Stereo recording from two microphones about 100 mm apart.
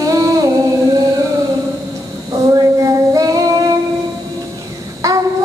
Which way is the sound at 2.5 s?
35° right (ahead or behind).